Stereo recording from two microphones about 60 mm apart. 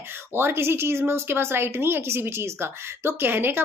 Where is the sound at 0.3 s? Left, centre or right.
Right.